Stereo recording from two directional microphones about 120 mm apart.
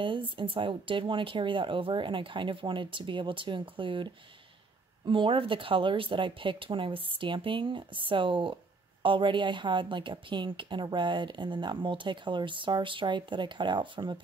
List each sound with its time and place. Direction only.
0.0 s a woman's voice: 45° right (ahead or behind)